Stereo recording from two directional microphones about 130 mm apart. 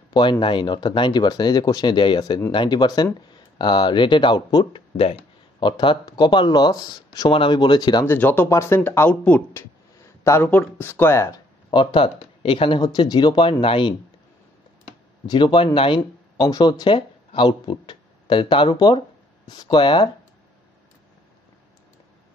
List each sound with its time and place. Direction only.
0.1 s speech: 35° left (ahead or behind)
4.9 s speech: 45° left (ahead or behind)
8.0 s speech: 15° left (ahead or behind)
11.7 s speech: 40° left (ahead or behind)
15.2 s speech: 35° left (ahead or behind)